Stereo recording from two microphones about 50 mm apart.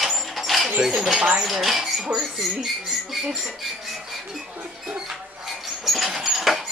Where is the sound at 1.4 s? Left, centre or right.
Centre.